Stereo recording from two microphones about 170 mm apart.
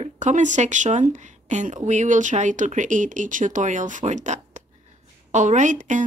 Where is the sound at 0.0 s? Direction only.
45° right (ahead or behind).